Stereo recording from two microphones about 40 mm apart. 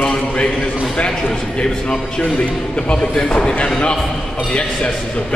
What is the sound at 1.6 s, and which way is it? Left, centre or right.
A man's voice, left.